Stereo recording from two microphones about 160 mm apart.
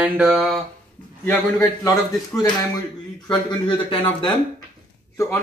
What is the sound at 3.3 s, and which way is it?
Speech, 30° left (ahead or behind).